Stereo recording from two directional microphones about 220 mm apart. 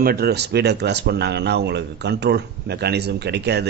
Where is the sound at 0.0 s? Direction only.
45° right (ahead or behind).